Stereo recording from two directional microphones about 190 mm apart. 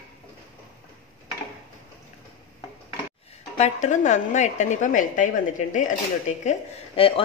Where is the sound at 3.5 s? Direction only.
40° left (ahead or behind).